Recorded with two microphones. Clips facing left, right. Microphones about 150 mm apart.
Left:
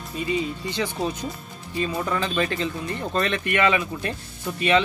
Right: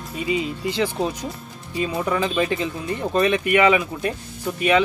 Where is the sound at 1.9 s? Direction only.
10° right (ahead or behind).